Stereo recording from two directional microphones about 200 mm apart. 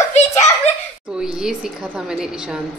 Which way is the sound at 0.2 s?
35° left (ahead or behind).